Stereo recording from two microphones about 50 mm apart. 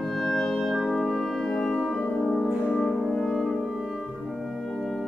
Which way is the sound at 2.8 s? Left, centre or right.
Centre.